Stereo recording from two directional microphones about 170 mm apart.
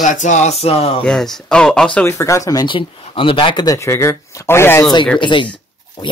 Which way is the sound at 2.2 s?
20° left (ahead or behind).